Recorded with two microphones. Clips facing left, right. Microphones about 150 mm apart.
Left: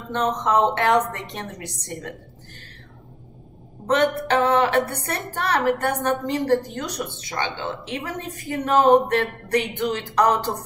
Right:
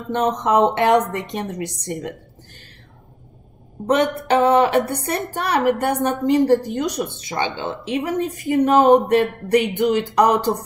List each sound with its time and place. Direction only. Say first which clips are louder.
0.1 s a woman's voice: right 3 dB; 15° right (ahead or behind)
3.8 s a woman's voice: right 2 dB; 15° right (ahead or behind)